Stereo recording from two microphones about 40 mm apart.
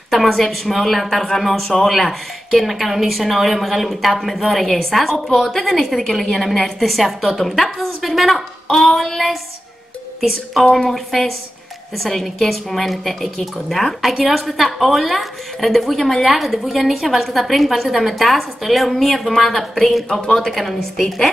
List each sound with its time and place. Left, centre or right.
0.1 s a woman's voice: centre
10.6 s a woman's voice: centre
14.1 s a woman's voice: centre
20.1 s speech: left
20.3 s a woman's voice: centre